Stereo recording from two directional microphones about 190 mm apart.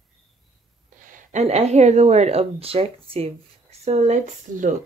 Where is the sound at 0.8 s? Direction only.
45° right (ahead or behind).